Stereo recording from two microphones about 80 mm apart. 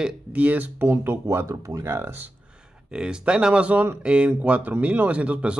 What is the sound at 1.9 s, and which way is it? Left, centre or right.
Speech, right.